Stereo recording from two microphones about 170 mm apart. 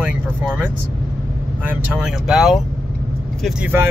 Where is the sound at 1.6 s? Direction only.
10° right (ahead or behind).